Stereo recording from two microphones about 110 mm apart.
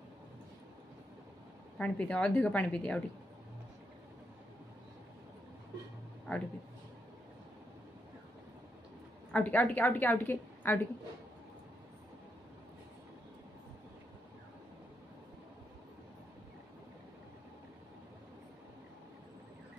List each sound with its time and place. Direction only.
1.8 s a woman's voice: 10° left (ahead or behind)
6.3 s a sound: 10° left (ahead or behind)
9.3 s a woman's voice: 15° left (ahead or behind)